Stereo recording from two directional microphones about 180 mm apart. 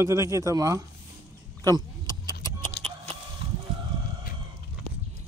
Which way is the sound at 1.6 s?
20° right (ahead or behind).